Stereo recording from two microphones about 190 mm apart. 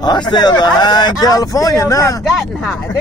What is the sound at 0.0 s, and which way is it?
Speech, 20° left (ahead or behind).